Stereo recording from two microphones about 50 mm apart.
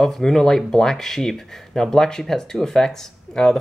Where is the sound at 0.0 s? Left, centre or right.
Centre.